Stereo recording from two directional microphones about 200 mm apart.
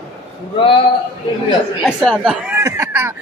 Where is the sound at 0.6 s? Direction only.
25° left (ahead or behind).